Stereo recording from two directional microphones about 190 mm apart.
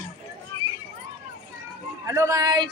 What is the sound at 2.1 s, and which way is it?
Speech, 15° right (ahead or behind).